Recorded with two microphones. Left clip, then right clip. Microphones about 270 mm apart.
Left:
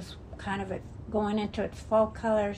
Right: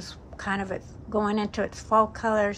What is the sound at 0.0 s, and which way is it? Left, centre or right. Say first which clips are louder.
A woman's voice: right 5 dB; centre.